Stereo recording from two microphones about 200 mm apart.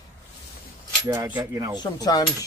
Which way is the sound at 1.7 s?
20° left (ahead or behind).